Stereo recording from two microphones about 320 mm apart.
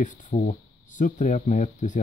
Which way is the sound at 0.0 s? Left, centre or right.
Left.